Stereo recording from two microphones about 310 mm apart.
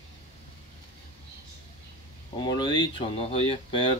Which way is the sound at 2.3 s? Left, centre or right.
Centre.